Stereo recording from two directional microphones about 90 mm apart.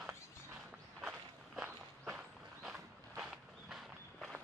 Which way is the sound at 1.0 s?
10° right (ahead or behind).